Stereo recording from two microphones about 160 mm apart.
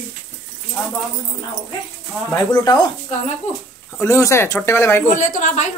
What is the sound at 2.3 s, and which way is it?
Speech, 20° left (ahead or behind).